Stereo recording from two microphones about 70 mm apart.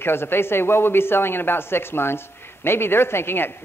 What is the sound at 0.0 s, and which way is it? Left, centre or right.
Speech, left.